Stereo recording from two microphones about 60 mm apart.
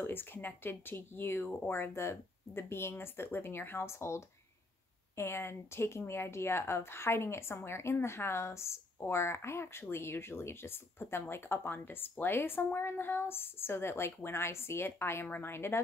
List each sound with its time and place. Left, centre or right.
0.0 s speech: left